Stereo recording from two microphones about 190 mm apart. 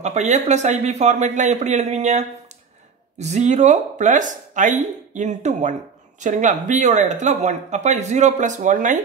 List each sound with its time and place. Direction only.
0.0 s speech: 35° right (ahead or behind)